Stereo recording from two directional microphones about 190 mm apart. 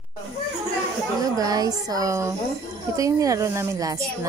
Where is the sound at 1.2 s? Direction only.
20° right (ahead or behind).